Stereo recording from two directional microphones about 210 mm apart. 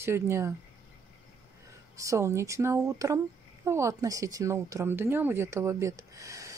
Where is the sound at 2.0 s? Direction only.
15° right (ahead or behind).